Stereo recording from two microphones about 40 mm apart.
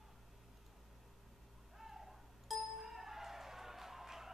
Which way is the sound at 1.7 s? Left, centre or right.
Centre.